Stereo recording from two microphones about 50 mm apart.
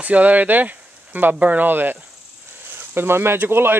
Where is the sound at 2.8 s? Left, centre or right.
Right.